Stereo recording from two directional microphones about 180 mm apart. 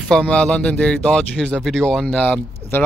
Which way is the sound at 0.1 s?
5° left (ahead or behind).